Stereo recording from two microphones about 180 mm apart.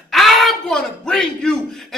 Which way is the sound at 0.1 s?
Centre (ahead or behind).